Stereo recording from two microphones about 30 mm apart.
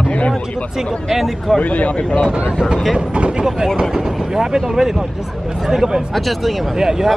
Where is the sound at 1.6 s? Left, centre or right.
Left.